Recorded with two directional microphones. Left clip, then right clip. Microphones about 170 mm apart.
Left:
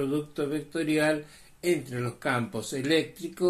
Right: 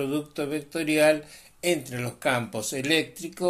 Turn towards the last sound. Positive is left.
turn(degrees=-20)  # may be behind; listen again after turning